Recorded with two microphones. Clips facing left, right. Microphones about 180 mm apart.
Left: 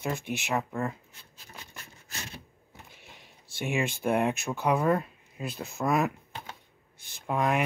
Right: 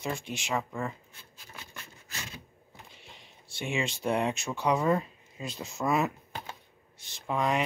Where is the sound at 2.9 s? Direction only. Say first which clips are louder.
Even; 55° left (ahead or behind).